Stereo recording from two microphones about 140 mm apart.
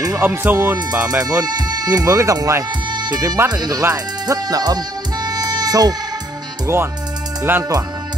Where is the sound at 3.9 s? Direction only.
25° right (ahead or behind).